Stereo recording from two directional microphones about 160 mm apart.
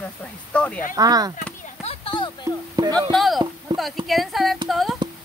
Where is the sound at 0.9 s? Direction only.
25° right (ahead or behind).